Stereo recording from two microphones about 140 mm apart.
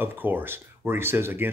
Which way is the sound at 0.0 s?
15° right (ahead or behind).